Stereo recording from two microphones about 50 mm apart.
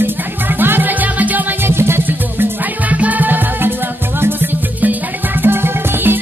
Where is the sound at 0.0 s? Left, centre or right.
Right.